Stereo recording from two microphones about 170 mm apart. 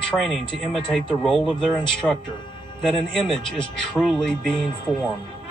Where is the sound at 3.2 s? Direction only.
30° left (ahead or behind).